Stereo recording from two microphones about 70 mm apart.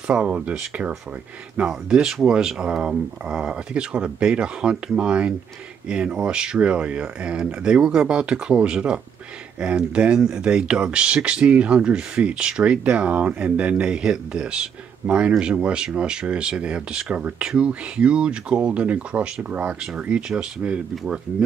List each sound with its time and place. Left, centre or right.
0.1 s speech: centre